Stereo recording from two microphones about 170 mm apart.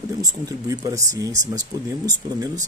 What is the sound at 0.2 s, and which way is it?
Speech, 20° right (ahead or behind).